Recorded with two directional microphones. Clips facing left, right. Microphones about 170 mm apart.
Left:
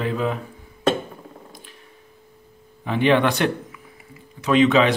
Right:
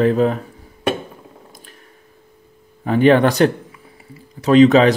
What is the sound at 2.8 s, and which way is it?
Speech, 45° right (ahead or behind).